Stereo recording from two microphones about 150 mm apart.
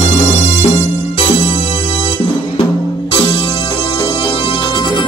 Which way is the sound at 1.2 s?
35° left (ahead or behind).